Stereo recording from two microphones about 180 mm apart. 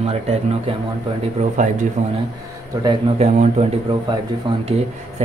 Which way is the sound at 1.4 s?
45° right (ahead or behind).